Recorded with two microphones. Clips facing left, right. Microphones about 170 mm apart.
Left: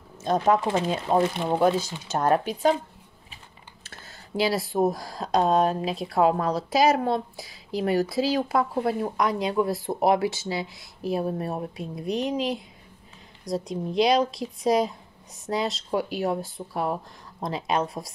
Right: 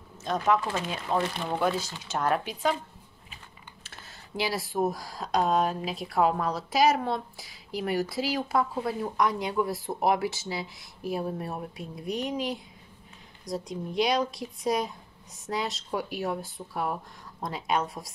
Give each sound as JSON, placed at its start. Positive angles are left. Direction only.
{"t": 0.2, "sound": "speech", "side_deg": 40}
{"t": 0.6, "sound": "speech", "side_deg": 25}
{"t": 2.1, "sound": "speech", "side_deg": 40}
{"t": 4.5, "sound": "speech", "side_deg": 30}